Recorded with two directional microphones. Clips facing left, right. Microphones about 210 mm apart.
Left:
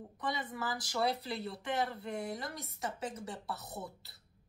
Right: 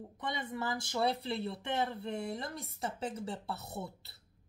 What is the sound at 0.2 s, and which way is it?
Speech, 25° right (ahead or behind).